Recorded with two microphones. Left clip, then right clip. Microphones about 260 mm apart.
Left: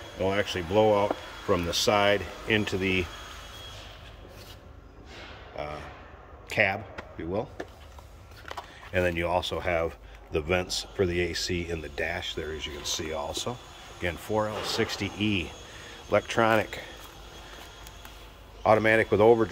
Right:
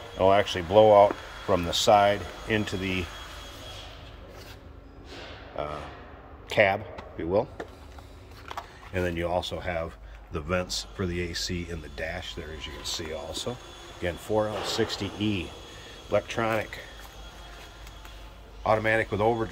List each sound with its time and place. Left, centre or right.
0.2 s speech: centre
5.5 s speech: centre
8.9 s speech: centre; by 16.8 s left
18.6 s speech: centre